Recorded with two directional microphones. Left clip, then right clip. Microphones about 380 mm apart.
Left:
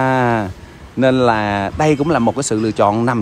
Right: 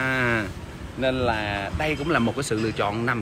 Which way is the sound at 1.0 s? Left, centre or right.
Left.